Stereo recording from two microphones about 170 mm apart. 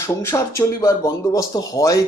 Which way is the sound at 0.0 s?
15° left (ahead or behind).